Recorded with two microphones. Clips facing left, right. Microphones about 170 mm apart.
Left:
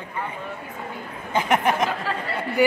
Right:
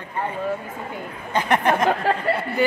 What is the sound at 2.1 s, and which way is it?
Speech, 55° right (ahead or behind).